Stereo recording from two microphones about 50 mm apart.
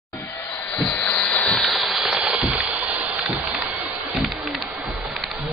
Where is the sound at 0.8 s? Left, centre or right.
Left.